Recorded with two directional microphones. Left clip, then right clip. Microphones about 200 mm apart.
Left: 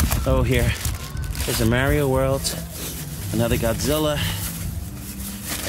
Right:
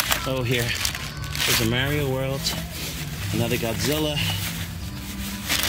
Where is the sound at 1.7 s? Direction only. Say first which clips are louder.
Left 4 dB; 25° left (ahead or behind).